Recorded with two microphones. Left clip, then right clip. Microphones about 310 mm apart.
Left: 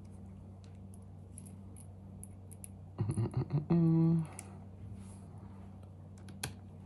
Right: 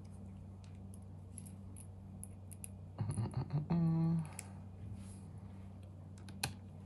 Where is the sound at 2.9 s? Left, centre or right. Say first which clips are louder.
Left 6 dB; left.